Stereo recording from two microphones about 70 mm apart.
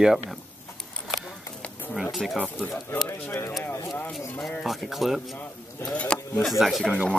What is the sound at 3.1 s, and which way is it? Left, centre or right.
Speech, left.